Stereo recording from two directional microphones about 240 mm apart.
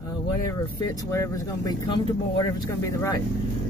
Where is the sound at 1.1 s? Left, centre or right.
Centre.